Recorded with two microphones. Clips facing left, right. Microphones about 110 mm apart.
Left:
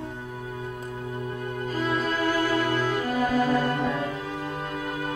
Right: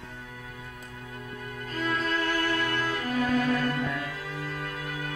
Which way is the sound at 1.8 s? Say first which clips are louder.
Left 2 dB; 5° left (ahead or behind).